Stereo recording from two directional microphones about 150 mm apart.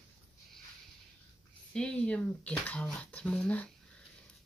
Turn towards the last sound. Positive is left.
turn(degrees=10)  # may be behind; listen again after turning